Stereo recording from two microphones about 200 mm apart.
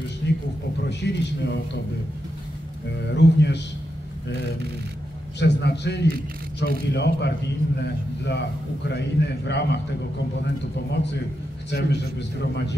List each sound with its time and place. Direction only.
0.2 s a sound: 60° left (ahead or behind)
0.8 s a man's voice: 60° left (ahead or behind)
3.2 s a man's voice: 60° left (ahead or behind)
5.4 s a man's voice: 60° left (ahead or behind)